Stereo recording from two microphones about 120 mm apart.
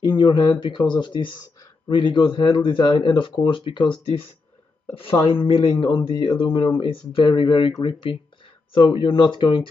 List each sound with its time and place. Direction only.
0.0 s speech: 40° left (ahead or behind)